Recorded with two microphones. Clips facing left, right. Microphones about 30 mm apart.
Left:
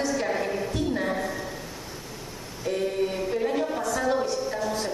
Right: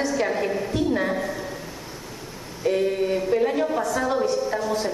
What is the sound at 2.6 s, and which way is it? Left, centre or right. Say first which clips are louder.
A woman's voice: right 4 dB; centre.